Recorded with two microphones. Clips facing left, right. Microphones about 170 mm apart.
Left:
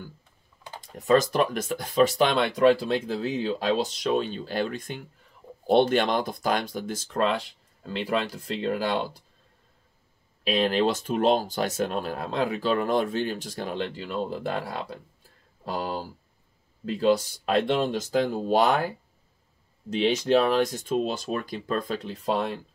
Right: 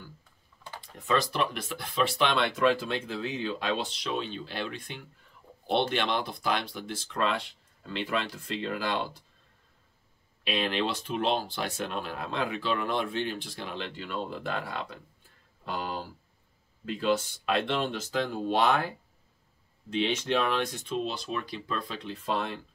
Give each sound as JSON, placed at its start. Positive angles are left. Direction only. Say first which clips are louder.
{"t": 0.7, "sound": "speech", "louder": "left 7 dB", "side_deg": 40}
{"t": 10.4, "sound": "speech", "louder": "left 6 dB", "side_deg": 40}
{"t": 19.9, "sound": "speech", "louder": "left 6 dB", "side_deg": 40}